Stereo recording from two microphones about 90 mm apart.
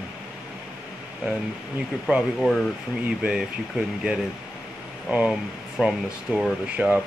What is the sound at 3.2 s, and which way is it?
Speech, 10° right (ahead or behind).